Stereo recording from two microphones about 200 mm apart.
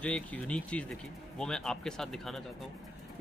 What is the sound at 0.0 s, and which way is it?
Speech, 5° left (ahead or behind).